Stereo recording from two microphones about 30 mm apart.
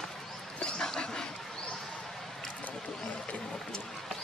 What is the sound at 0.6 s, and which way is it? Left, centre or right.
Dog, left.